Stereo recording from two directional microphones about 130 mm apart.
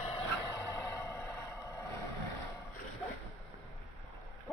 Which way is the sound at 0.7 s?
25° left (ahead or behind).